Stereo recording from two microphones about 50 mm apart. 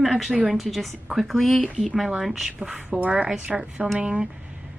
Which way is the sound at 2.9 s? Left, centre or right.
Right.